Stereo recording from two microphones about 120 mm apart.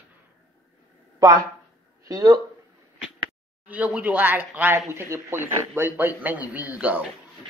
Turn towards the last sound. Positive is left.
turn(degrees=-15)  # may be behind; listen again after turning